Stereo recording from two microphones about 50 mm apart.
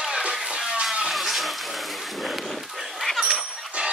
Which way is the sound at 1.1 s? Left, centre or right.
Centre.